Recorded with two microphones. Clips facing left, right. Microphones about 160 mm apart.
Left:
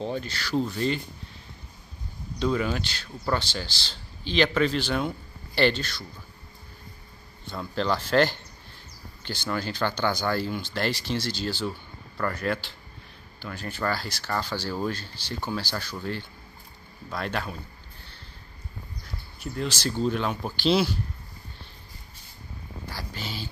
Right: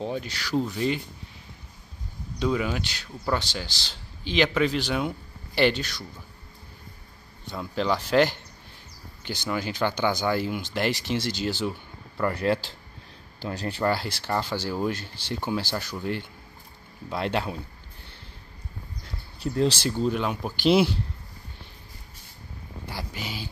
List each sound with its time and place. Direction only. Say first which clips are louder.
0.0 s speech: even; 10° right (ahead or behind)
2.3 s speech: even; 10° right (ahead or behind)
7.5 s speech: right 1 dB; 10° right (ahead or behind)
19.4 s speech: right 7 dB; 30° right (ahead or behind)
20.0 s speech: left 1 dB; 5° right (ahead or behind)
22.8 s a sound: right 2 dB; 20° right (ahead or behind)